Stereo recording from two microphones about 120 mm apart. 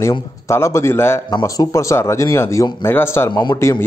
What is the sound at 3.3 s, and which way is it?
Speech, 30° left (ahead or behind).